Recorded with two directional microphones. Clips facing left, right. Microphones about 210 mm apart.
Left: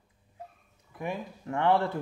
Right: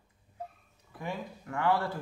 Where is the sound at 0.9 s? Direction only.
20° left (ahead or behind).